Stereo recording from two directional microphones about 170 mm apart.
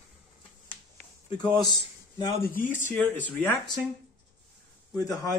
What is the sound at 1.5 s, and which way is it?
Speech, 25° left (ahead or behind).